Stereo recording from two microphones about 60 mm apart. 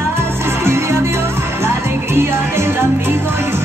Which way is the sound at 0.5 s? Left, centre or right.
Right.